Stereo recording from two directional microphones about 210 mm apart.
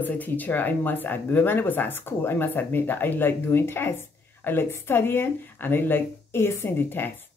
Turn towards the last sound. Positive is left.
turn(degrees=10)  # may be behind; listen again after turning